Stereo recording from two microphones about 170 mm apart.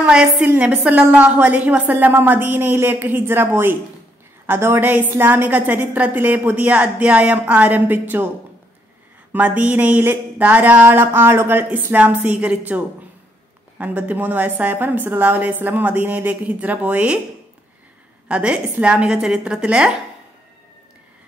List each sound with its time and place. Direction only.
0.0 s a woman's voice: 5° right (ahead or behind)
9.3 s a woman's voice: 10° right (ahead or behind)
18.3 s a woman's voice: 5° right (ahead or behind)